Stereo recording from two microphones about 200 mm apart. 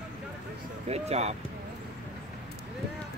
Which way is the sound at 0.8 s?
30° right (ahead or behind).